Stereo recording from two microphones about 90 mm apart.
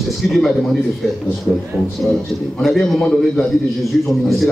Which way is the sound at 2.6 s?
Centre (ahead or behind).